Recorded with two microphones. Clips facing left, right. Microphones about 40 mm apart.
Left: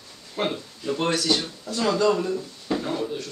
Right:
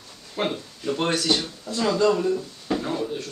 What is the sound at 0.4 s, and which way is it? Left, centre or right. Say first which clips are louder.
Speech: even; centre.